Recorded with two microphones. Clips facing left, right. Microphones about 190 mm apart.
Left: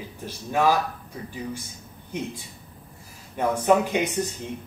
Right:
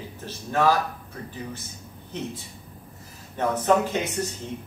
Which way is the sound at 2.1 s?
10° left (ahead or behind).